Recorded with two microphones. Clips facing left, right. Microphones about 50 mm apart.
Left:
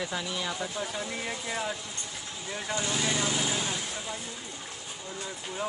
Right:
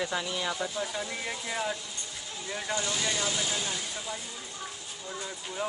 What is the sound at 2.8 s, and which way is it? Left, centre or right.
Speech, centre.